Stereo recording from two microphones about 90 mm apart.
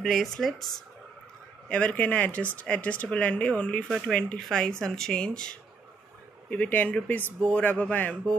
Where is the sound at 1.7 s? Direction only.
15° left (ahead or behind).